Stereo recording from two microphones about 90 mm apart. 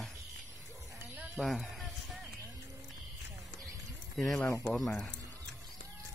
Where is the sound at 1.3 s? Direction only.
Centre (ahead or behind).